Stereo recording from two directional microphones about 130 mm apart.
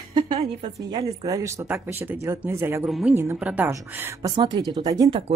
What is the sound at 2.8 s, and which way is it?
Speech, centre (ahead or behind).